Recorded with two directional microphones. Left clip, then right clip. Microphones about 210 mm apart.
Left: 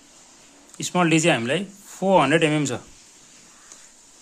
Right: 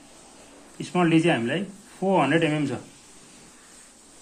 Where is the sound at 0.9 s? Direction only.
45° left (ahead or behind).